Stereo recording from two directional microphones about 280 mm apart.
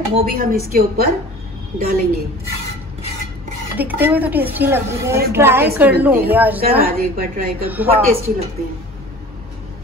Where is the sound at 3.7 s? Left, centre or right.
Centre.